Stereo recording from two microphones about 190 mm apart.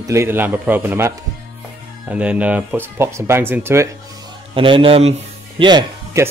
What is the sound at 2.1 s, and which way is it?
Speech, 5° right (ahead or behind).